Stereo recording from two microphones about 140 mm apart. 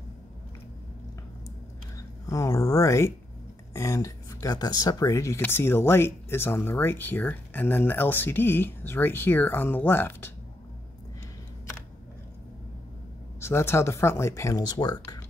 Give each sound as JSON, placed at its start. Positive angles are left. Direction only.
{"t": 2.0, "sound": "speech", "side_deg": 25}
{"t": 13.4, "sound": "speech", "side_deg": 20}